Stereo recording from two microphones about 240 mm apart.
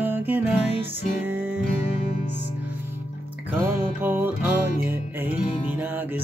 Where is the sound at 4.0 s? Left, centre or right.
Centre.